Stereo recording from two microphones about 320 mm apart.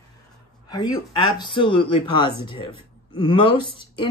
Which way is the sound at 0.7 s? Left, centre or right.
Centre.